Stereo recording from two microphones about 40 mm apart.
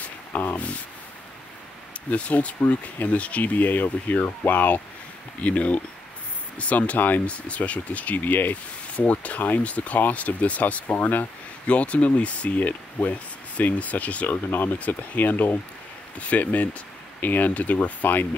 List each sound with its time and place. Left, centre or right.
0.3 s speech: left
2.0 s speech: left
8.9 s speech: left
11.6 s speech: left
14.3 s speech: left
17.2 s speech: left